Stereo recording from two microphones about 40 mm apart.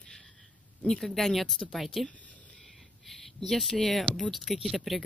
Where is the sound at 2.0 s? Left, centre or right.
Left.